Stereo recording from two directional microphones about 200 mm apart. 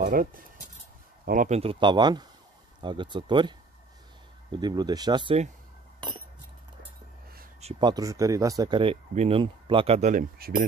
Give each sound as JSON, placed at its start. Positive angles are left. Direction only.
{"t": 0.0, "sound": "speech", "side_deg": -45}
{"t": 5.9, "sound": "chink", "side_deg": -25}
{"t": 7.6, "sound": "speech", "side_deg": -20}